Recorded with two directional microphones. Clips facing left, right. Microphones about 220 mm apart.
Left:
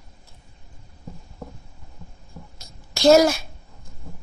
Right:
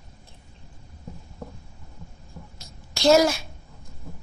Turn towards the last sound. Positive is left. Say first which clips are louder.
# left 3 dB
turn(degrees=45)  # may be behind; listen again after turning